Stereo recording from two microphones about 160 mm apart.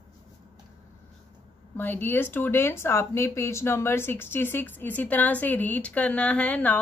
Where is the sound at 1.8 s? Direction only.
10° left (ahead or behind).